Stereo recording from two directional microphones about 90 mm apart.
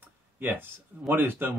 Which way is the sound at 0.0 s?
20° right (ahead or behind).